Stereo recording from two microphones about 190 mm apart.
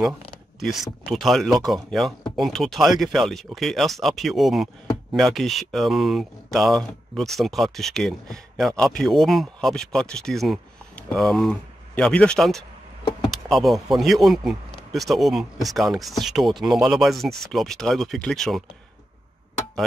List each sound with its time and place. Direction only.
0.6 s speech: centre (ahead or behind)